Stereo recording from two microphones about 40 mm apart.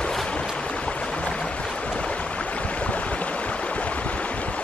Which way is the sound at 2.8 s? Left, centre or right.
Left.